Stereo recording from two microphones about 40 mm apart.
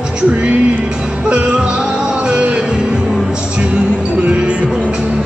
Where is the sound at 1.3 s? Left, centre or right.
Right.